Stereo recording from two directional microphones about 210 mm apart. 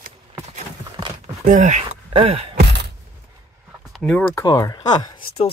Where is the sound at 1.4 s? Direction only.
35° right (ahead or behind).